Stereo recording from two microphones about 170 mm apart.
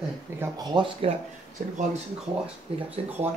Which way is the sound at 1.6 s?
50° right (ahead or behind).